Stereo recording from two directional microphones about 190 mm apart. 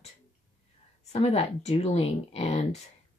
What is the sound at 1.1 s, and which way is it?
Speech, 35° left (ahead or behind).